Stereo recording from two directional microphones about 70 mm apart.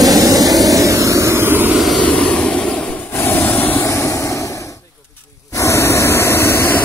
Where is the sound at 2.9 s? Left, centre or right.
Left.